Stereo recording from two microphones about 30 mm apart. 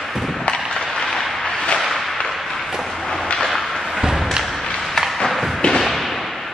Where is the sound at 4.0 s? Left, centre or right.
Centre.